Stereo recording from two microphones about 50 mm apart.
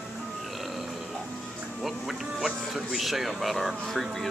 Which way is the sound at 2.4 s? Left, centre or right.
Centre.